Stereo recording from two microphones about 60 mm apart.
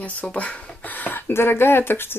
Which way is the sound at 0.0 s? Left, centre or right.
Left.